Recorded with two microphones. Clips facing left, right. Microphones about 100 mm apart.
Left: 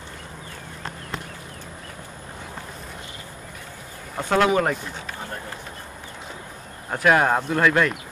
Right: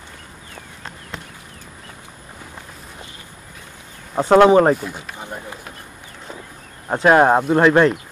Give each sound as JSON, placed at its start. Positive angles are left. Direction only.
{"t": 4.2, "sound": "speech", "side_deg": -30}
{"t": 4.8, "sound": "speech", "side_deg": -10}
{"t": 6.9, "sound": "speech", "side_deg": -30}